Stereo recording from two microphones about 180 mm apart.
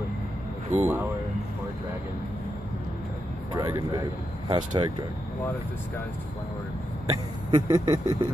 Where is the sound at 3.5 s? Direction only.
20° right (ahead or behind).